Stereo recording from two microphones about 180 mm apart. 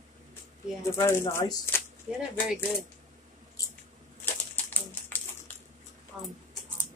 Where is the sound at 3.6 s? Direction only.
20° left (ahead or behind).